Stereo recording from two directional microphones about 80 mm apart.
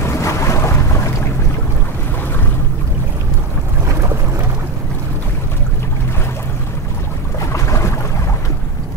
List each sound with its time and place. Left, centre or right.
0.0 s boat: left
7.3 s boat: left